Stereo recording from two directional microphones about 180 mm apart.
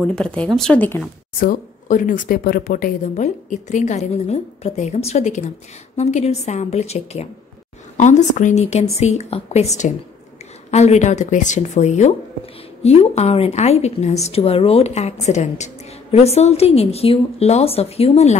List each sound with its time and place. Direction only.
0.0 s speech: 5° left (ahead or behind)
1.4 s a woman's voice: 50° left (ahead or behind)